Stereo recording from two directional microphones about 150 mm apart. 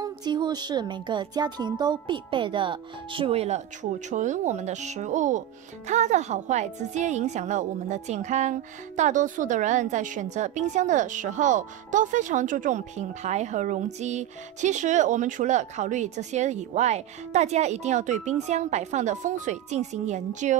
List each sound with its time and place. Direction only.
0.0 s a woman's voice: 30° right (ahead or behind); by 20.5 s 55° right (ahead or behind)